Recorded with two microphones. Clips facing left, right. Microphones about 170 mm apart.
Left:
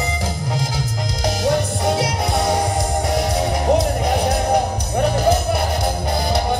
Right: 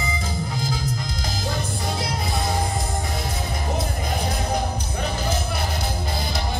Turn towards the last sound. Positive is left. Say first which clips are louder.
# left 10 dB
turn(degrees=65)  # may be behind; listen again after turning